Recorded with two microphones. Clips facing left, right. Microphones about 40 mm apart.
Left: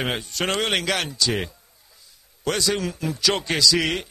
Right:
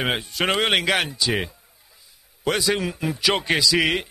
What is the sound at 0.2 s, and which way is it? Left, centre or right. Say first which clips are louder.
Speech: right 3 dB; centre.